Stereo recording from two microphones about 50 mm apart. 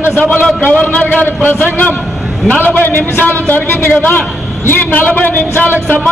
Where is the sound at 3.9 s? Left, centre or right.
Left.